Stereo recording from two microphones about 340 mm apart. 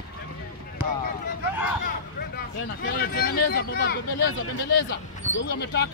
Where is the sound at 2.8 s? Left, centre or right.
Left.